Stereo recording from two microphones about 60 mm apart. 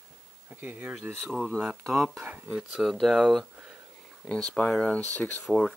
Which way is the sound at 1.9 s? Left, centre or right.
Centre.